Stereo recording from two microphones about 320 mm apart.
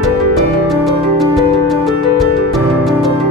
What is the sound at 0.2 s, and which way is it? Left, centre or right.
Music, centre.